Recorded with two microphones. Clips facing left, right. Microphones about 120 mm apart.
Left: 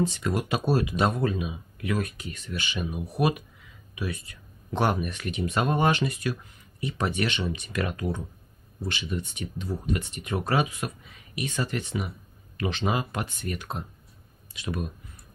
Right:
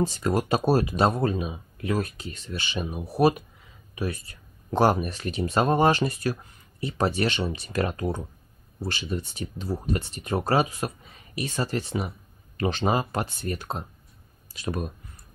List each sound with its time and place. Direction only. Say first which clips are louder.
0.0 s speech: right 2 dB; 35° right (ahead or behind)